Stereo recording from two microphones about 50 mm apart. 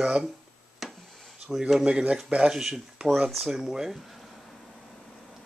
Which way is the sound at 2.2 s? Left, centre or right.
Right.